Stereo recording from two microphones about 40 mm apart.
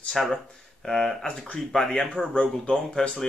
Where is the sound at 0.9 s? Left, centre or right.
Centre.